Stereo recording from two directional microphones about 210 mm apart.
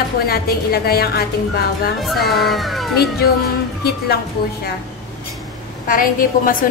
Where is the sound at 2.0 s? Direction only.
Centre (ahead or behind).